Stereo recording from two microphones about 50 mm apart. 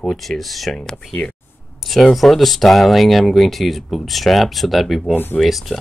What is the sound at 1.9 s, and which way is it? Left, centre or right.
Speech, centre.